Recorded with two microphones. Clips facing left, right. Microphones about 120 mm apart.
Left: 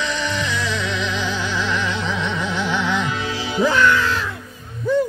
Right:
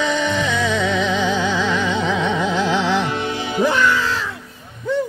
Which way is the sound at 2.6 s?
90° right.